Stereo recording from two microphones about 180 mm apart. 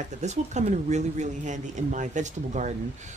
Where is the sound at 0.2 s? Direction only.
40° right (ahead or behind).